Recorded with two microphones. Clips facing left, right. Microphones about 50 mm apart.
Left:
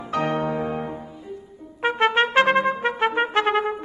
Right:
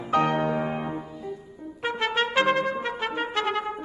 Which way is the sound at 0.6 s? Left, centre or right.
Centre.